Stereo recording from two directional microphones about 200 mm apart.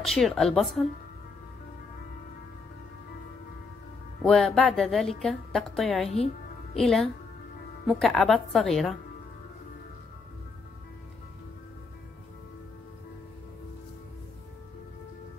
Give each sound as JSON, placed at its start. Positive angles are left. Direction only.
{"t": 0.0, "sound": "a woman's voice", "side_deg": 0}
{"t": 4.2, "sound": "a woman's voice", "side_deg": 0}
{"t": 6.0, "sound": "music", "side_deg": 30}
{"t": 6.8, "sound": "a woman's voice", "side_deg": 0}